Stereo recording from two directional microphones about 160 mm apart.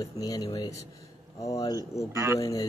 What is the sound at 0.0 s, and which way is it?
Speech, 25° left (ahead or behind).